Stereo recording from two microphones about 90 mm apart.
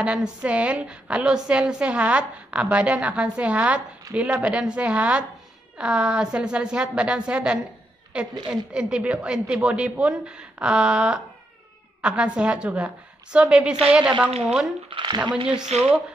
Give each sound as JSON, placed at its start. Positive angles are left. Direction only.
{"t": 0.0, "sound": "a woman's voice", "side_deg": -10}
{"t": 14.9, "sound": "speech", "side_deg": -55}
{"t": 15.4, "sound": "a woman's voice", "side_deg": -10}